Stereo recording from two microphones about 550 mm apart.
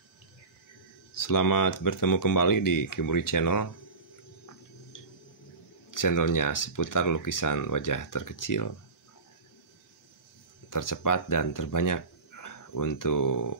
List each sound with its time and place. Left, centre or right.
1.1 s speech: left
5.9 s speech: left
10.7 s speech: left